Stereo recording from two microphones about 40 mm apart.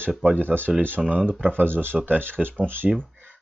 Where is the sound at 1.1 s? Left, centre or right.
Right.